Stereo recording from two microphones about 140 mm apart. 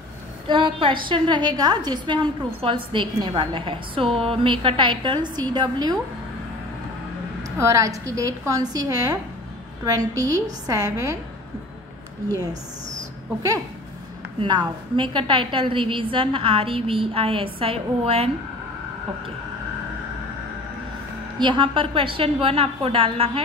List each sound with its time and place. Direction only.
0.5 s a woman's voice: 35° right (ahead or behind)
7.5 s a woman's voice: 20° right (ahead or behind)
14.4 s a woman's voice: 35° right (ahead or behind)
21.4 s a woman's voice: 35° right (ahead or behind)